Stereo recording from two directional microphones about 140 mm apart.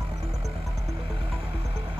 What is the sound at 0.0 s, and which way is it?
Music, 45° right (ahead or behind).